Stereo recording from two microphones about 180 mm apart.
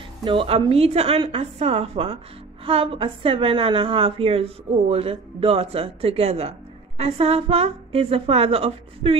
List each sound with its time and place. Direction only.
0.2 s a woman's voice: 30° right (ahead or behind)